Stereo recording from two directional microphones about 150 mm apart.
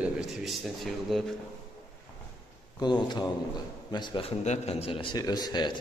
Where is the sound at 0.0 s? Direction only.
Centre (ahead or behind).